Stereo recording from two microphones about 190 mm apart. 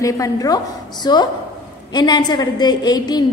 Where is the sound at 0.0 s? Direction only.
20° left (ahead or behind).